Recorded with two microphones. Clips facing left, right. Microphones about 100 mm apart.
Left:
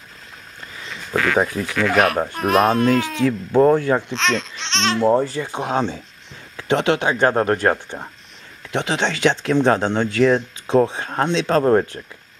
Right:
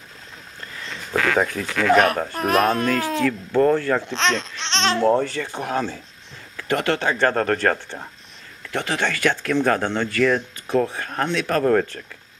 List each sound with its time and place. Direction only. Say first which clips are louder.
1.1 s speech: left 2 dB; 10° left (ahead or behind)
4.1 s speech: left 1 dB; centre (ahead or behind)
5.5 s speech: left 3 dB; 20° left (ahead or behind)